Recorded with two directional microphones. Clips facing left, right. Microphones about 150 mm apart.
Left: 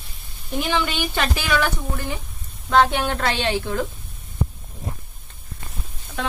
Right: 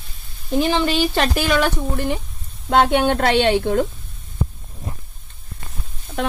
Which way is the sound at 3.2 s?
70° right (ahead or behind).